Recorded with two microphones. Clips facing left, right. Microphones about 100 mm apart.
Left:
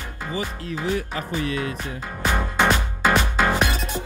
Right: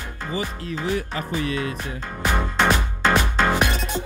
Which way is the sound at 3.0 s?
10° left (ahead or behind).